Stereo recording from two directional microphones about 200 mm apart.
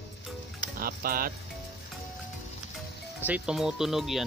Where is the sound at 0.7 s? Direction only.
45° right (ahead or behind).